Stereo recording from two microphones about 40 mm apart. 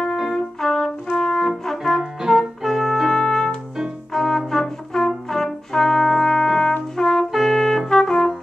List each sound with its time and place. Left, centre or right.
0.3 s trumpet: centre
1.1 s brass instrument: centre
1.7 s music: centre
4.1 s brass instrument: centre
7.3 s music: centre
7.9 s trumpet: centre